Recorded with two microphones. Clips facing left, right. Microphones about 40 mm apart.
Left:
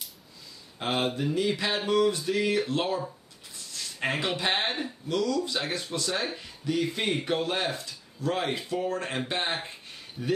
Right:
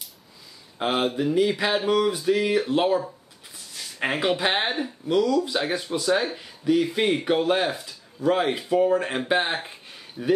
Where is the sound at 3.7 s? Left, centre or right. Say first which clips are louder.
Right 3 dB; centre.